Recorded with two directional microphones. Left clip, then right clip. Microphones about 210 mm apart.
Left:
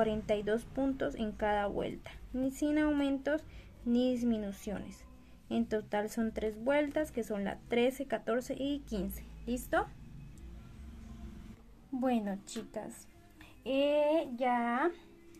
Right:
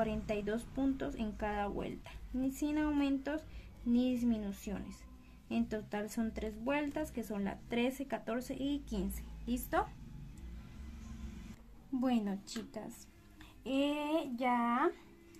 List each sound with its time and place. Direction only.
0.0 s a woman's voice: 20° left (ahead or behind)
12.0 s a woman's voice: 5° left (ahead or behind)